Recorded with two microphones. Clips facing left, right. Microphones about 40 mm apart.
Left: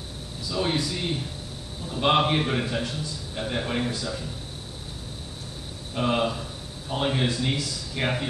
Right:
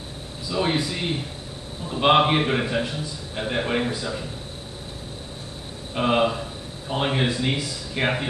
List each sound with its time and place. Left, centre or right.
0.5 s a man's voice: right
5.9 s a man's voice: right